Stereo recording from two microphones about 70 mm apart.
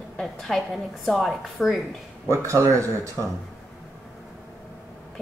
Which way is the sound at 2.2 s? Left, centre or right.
Right.